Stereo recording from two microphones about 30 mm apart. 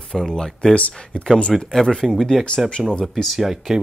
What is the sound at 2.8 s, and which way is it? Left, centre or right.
Speech, centre.